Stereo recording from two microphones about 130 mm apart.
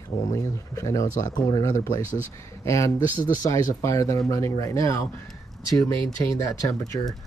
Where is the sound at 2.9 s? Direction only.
80° left.